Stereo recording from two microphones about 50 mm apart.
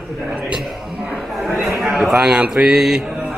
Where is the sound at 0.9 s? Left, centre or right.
Centre.